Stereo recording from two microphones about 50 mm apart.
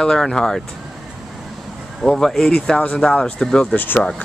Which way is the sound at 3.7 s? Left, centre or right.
Left.